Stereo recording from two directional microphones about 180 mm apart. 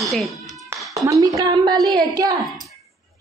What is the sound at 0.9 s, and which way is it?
A woman's voice, 20° right (ahead or behind).